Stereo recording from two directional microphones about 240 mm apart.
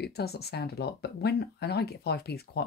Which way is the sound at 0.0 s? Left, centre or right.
Left.